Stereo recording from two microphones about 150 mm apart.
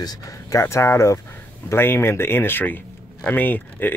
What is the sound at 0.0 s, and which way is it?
Speech, 25° left (ahead or behind).